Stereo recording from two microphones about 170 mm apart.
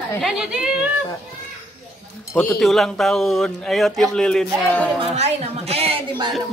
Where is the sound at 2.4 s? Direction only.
5° left (ahead or behind).